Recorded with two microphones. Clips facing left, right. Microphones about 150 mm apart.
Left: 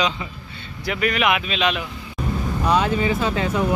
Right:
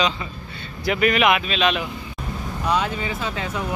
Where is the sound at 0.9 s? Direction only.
5° right (ahead or behind).